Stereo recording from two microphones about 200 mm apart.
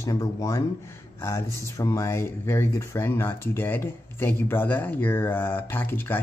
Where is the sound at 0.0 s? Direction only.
15° left (ahead or behind).